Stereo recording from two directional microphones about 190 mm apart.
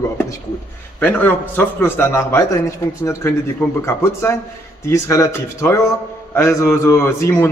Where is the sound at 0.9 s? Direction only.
10° left (ahead or behind).